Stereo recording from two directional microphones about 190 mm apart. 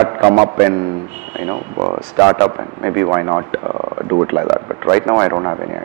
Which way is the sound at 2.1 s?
15° right (ahead or behind).